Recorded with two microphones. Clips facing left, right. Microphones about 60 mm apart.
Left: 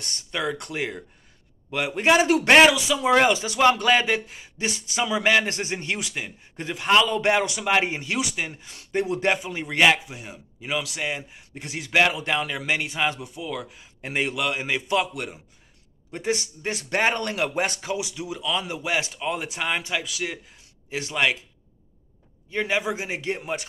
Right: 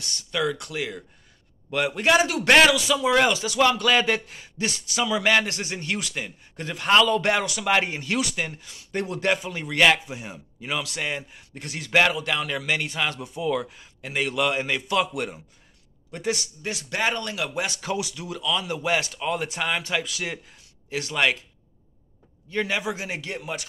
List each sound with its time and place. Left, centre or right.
0.0 s speech: left
1.7 s speech: centre
2.2 s speech: left
10.0 s speech: centre
12.2 s speech: left
13.2 s speech: centre
14.0 s speech: left
14.3 s speech: centre
14.7 s speech: centre
16.1 s speech: left
17.7 s speech: centre
20.9 s speech: centre
22.5 s speech: centre